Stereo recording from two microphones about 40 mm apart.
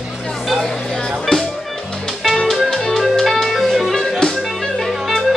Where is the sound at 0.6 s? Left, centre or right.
Centre.